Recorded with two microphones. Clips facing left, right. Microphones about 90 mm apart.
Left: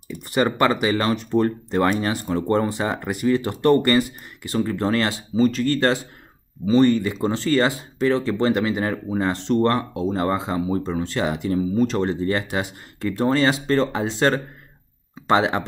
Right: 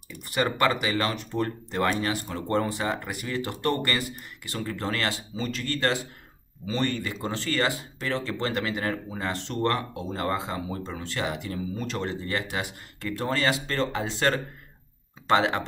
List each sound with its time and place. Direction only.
0.3 s speech: 25° left (ahead or behind)
6.6 s speech: 20° left (ahead or behind)